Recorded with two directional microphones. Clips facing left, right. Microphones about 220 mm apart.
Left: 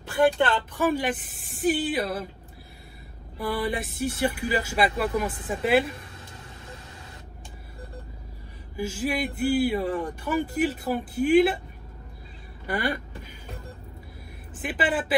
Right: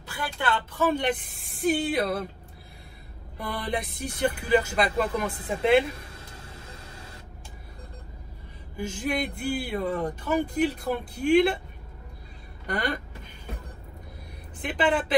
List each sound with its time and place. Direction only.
0.8 s speech: 5° left (ahead or behind)
3.3 s speech: 5° left (ahead or behind)
8.7 s speech: 5° left (ahead or behind)
12.6 s speech: 5° left (ahead or behind)
14.5 s speech: 5° left (ahead or behind)